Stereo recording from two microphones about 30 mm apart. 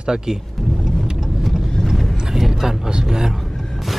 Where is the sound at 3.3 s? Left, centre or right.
Centre.